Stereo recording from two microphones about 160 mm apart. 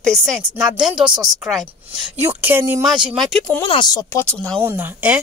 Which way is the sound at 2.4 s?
15° right (ahead or behind).